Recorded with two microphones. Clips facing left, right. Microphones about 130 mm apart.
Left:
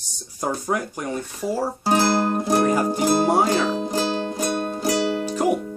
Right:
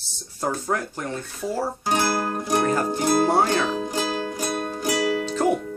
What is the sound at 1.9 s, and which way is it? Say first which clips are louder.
Music: left 5 dB; 30° left (ahead or behind).